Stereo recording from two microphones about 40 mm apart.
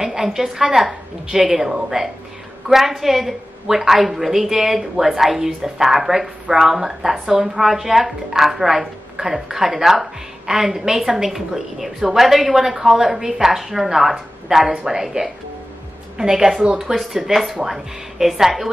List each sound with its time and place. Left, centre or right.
0.0 s speech: centre
14.7 s a woman's voice: right
15.0 s speech: centre
16.8 s speech: centre